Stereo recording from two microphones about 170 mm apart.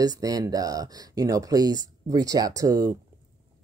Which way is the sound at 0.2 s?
20° right (ahead or behind).